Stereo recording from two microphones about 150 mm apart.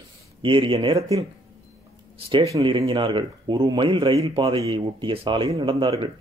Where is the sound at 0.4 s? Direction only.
35° right (ahead or behind).